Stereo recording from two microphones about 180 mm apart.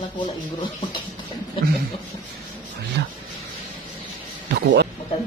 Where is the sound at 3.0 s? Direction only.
75° right (ahead or behind).